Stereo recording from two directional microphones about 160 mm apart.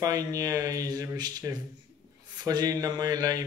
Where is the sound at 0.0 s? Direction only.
20° right (ahead or behind).